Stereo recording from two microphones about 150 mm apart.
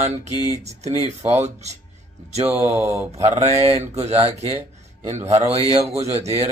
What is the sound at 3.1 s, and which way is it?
Speech, 45° right (ahead or behind).